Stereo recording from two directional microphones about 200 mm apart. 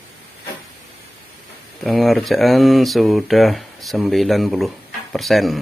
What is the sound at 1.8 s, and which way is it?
Speech, centre (ahead or behind).